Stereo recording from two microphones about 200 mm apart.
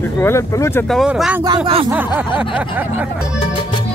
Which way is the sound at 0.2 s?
15° left (ahead or behind).